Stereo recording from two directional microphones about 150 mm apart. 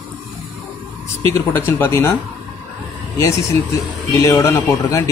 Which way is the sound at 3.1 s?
20° left (ahead or behind).